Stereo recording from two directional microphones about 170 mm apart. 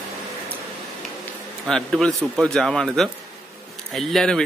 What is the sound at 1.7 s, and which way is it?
A man's voice, 5° left (ahead or behind).